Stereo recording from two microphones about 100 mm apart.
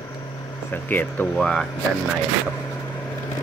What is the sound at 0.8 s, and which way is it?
Speech, 15° left (ahead or behind).